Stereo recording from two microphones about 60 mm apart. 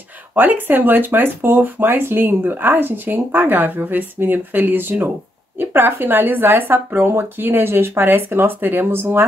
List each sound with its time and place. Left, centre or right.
0.3 s speech: right